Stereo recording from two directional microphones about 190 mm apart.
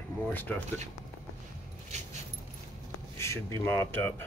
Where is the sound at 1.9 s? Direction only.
35° right (ahead or behind).